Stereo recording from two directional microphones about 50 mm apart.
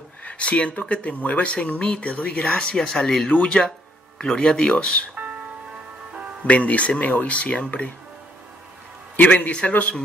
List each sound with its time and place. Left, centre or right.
0.2 s speech: left
2.7 s speech: centre
6.5 s speech: left
9.1 s speech: left